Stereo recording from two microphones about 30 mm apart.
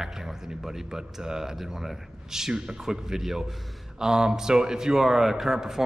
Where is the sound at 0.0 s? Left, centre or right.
Centre.